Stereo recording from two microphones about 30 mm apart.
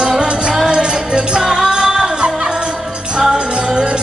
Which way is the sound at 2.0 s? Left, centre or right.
Right.